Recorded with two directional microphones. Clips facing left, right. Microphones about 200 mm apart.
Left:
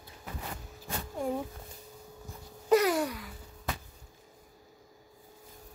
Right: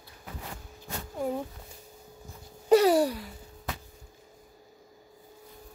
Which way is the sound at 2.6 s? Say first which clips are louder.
Right 5 dB; 30° right (ahead or behind).